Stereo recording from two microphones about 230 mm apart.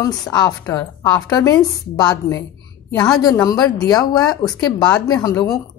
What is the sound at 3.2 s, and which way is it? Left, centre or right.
Speech, centre.